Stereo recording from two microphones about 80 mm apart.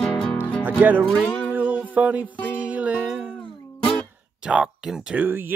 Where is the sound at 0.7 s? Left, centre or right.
Right.